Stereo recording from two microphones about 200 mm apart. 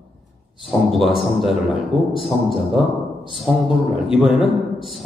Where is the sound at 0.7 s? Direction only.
Centre (ahead or behind).